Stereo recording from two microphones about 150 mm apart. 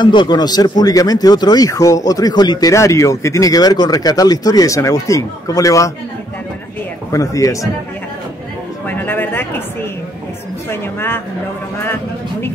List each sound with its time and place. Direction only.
0.0 s speech: 30° left (ahead or behind)
7.1 s speech: 20° left (ahead or behind)
8.8 s speech: 15° left (ahead or behind)
10.7 s a woman's voice: 15° left (ahead or behind)